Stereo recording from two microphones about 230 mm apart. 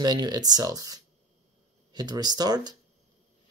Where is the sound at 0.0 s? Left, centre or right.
Centre.